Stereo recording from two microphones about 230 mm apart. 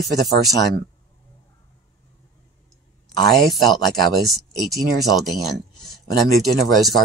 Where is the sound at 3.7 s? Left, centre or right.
Centre.